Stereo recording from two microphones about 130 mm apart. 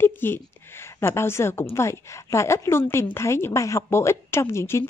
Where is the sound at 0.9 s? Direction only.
20° left (ahead or behind).